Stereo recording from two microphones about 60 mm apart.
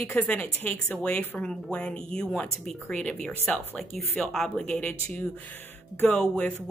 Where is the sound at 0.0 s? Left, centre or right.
Left; by 4.6 s centre.